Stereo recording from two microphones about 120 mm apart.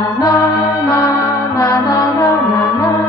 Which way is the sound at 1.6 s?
25° left (ahead or behind).